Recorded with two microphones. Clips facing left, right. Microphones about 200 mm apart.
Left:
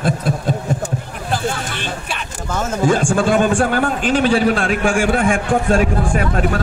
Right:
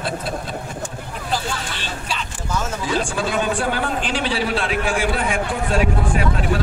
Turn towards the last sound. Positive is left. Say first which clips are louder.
# left 3 dB
turn(degrees=50)  # may be behind; listen again after turning